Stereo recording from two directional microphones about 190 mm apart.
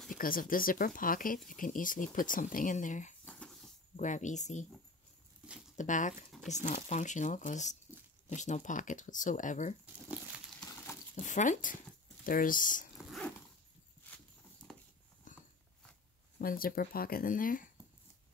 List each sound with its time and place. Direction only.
0.2 s speech: 45° left (ahead or behind)
3.3 s a sound: 5° left (ahead or behind)
3.9 s speech: 40° left (ahead or behind)
5.8 s speech: 40° left (ahead or behind)
10.0 s crumpling: 5° right (ahead or behind)
11.1 s speech: 40° left (ahead or behind)
12.9 s dog: centre (ahead or behind)
16.3 s speech: 50° left (ahead or behind)